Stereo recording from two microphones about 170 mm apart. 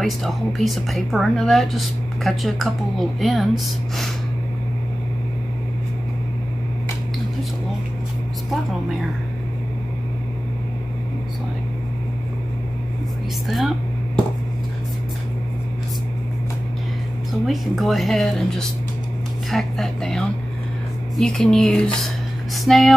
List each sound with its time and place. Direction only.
0.0 s a woman's voice: centre (ahead or behind)
17.3 s a woman's voice: centre (ahead or behind)